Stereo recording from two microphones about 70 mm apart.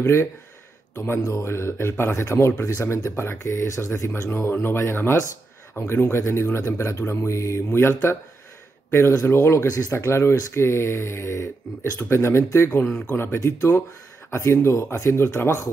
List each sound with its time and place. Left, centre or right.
0.0 s speech: left
1.2 s speech: left
9.1 s speech: left
12.0 s speech: left
12.8 s speech: centre
13.1 s speech: left